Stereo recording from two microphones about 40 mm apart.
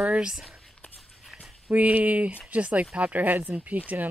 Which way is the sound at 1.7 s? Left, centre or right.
Right.